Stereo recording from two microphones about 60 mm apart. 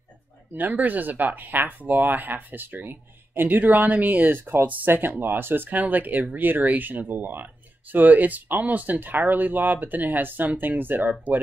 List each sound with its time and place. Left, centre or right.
0.6 s speech: right